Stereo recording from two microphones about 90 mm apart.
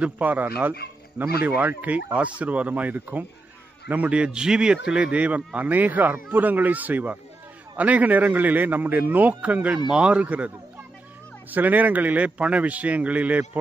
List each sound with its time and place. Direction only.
0.0 s a man's voice: 20° right (ahead or behind)
11.5 s speech: 20° right (ahead or behind)